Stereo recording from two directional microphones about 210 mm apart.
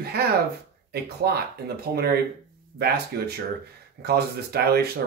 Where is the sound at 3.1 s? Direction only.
50° right (ahead or behind).